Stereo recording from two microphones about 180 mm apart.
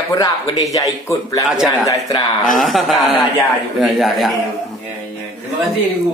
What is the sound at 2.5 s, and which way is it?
A man's voice, centre (ahead or behind).